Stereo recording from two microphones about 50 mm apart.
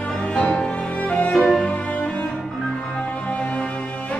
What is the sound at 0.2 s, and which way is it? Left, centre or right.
Music, left.